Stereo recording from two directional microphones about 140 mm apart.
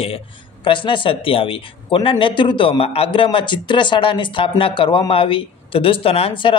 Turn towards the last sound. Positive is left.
turn(degrees=45)  # may be behind; listen again after turning